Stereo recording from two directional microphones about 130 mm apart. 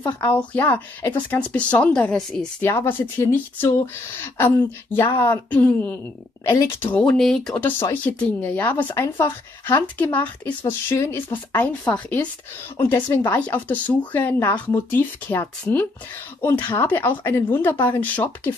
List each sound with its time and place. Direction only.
0.4 s speech: 10° left (ahead or behind)
2.6 s speech: 20° left (ahead or behind)